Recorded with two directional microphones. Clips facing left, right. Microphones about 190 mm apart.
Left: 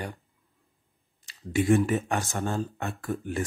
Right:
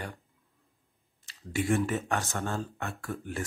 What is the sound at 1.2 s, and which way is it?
Speech, 20° left (ahead or behind).